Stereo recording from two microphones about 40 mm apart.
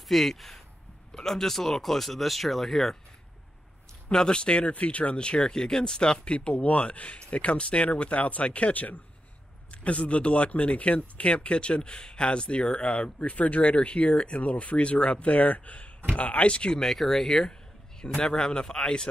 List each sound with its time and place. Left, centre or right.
0.1 s speech: centre
4.1 s speech: left
16.8 s speech: centre